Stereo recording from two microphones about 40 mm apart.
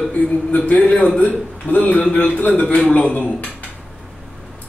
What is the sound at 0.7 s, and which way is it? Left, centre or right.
Speech, left.